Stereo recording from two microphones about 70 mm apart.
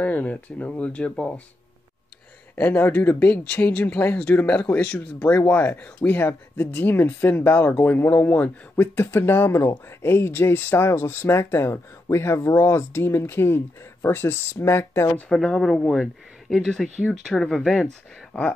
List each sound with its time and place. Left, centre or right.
0.0 s speech: left
2.5 s speech: left
15.2 s speech: centre
18.3 s speech: centre